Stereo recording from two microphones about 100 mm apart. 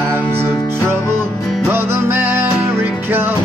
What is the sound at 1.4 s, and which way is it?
Music, centre (ahead or behind).